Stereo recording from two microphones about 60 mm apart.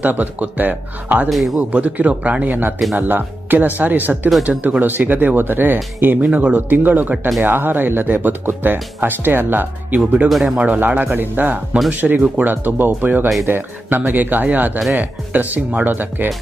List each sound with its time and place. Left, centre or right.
0.0 s speech: right
1.3 s speech: centre
1.6 s speech: right